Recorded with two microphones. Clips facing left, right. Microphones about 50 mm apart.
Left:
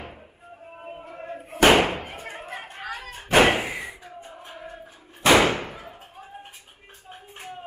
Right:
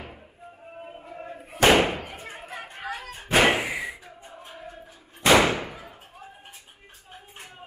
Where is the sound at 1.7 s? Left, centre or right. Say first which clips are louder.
Left 1 dB; centre.